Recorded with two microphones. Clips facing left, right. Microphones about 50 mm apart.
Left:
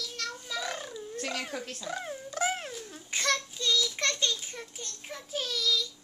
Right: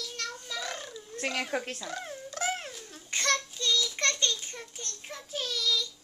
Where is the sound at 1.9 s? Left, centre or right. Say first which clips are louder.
Left 2 dB; centre.